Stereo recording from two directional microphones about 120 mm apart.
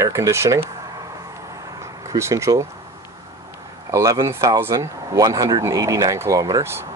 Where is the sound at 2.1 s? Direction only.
25° right (ahead or behind).